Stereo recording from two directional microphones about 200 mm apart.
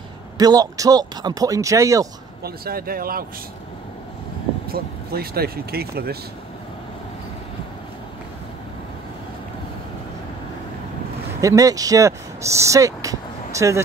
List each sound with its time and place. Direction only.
0.4 s speech: 20° right (ahead or behind)
2.4 s speech: 50° right (ahead or behind)
4.6 s speech: 50° right (ahead or behind)
11.4 s speech: 15° right (ahead or behind)